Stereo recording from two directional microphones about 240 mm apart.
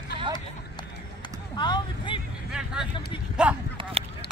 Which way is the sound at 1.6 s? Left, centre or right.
Centre.